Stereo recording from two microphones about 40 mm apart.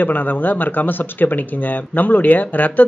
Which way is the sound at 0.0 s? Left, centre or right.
Left.